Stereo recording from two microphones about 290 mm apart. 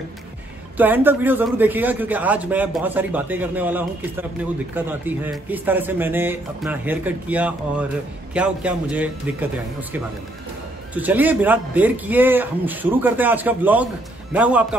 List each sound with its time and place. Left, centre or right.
0.7 s a man's voice: centre